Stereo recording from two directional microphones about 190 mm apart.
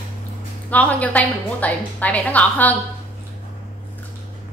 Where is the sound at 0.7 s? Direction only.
10° left (ahead or behind).